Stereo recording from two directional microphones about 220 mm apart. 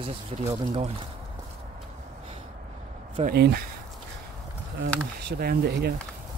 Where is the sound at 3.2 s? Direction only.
45° right (ahead or behind).